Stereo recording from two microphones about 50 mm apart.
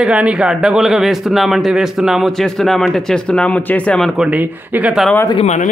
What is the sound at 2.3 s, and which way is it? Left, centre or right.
Speech, centre.